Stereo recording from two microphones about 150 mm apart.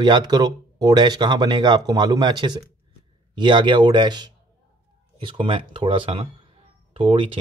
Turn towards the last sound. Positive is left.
turn(degrees=-35)  # may be behind; listen again after turning